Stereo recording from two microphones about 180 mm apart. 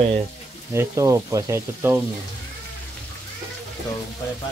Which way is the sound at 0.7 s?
15° right (ahead or behind).